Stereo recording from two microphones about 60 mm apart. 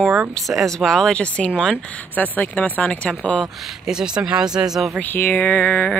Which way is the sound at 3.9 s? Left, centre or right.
Centre.